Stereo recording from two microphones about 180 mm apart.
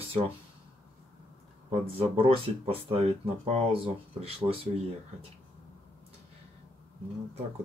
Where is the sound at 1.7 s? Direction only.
30° right (ahead or behind).